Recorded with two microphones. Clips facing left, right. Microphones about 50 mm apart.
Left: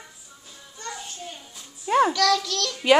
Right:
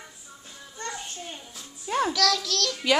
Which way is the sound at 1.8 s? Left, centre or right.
Centre.